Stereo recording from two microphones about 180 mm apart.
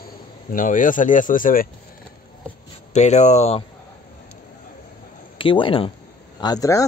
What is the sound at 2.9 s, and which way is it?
Speech, 40° left (ahead or behind).